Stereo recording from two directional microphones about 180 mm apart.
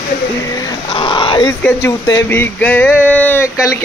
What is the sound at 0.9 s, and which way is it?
Speech, 25° left (ahead or behind).